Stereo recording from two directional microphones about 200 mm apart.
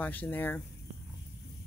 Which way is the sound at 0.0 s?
10° left (ahead or behind).